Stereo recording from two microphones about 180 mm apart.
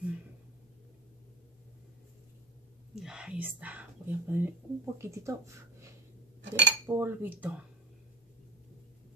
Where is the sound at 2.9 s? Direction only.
5° right (ahead or behind).